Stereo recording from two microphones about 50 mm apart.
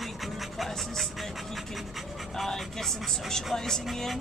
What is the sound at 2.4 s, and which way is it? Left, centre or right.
Speech, centre.